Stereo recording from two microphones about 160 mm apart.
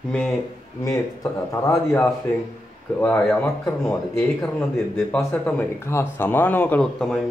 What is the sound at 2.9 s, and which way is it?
Speech, 10° left (ahead or behind).